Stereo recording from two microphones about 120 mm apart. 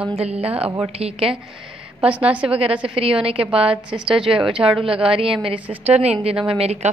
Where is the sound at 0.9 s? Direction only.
55° right (ahead or behind).